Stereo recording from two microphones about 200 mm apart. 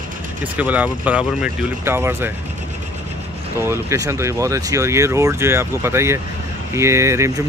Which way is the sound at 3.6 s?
15° right (ahead or behind).